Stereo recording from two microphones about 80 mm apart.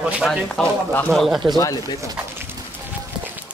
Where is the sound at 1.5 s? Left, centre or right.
Left.